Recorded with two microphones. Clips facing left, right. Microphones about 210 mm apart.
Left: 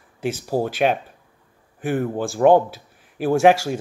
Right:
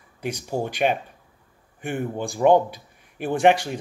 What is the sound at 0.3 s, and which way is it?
Speech, 5° left (ahead or behind).